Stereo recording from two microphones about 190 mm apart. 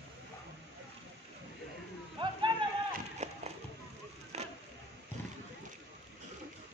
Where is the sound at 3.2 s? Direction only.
35° right (ahead or behind).